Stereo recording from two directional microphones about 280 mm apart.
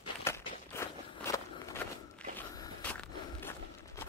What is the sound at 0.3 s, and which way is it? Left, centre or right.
Walk, centre.